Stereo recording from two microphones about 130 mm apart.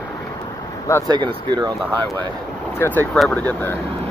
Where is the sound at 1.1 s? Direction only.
40° right (ahead or behind).